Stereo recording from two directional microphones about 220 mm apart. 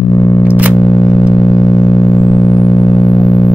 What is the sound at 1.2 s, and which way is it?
Vehicle, 20° left (ahead or behind).